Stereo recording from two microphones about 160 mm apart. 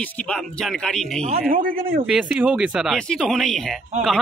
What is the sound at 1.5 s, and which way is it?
Speech, 60° right (ahead or behind).